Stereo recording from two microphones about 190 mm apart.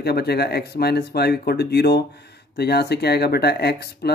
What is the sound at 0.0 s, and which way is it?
Speech, 55° left (ahead or behind).